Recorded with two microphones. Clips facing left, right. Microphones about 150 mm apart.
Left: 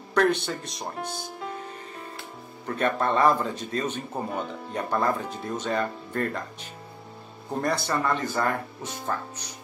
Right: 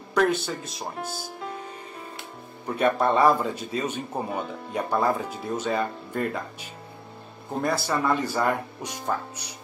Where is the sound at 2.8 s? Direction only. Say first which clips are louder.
Right 2 dB; 10° right (ahead or behind).